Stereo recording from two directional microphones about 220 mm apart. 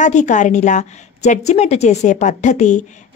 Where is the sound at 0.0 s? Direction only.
35° left (ahead or behind).